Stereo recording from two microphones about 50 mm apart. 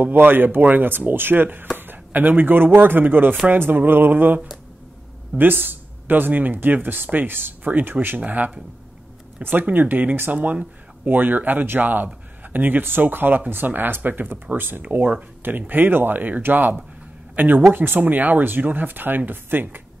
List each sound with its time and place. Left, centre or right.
0.0 s speech: right
5.4 s speech: right
10.3 s speech: right